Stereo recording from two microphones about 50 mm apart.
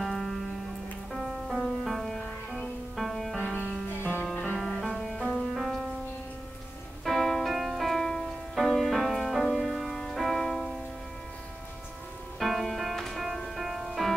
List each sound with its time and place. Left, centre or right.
0.0 s music: centre
1.6 s music: centre
4.0 s music: left
4.6 s music: centre
7.1 s keyboard: centre
7.5 s music: centre
12.4 s music: centre